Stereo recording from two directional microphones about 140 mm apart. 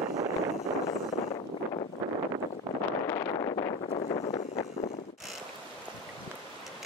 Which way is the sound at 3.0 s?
20° left (ahead or behind).